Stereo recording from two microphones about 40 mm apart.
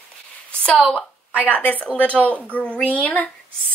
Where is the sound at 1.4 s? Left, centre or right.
Left.